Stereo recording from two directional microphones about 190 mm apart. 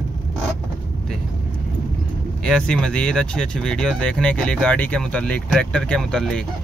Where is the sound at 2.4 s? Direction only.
5° left (ahead or behind).